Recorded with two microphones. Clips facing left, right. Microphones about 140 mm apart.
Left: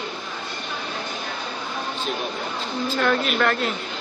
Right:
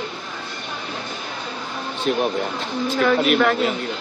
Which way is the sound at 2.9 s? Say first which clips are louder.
Right 5 dB; centre (ahead or behind).